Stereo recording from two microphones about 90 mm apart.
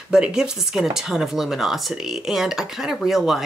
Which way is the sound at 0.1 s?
10° right (ahead or behind).